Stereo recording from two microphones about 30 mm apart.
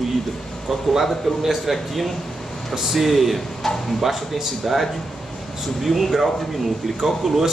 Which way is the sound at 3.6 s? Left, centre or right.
Centre.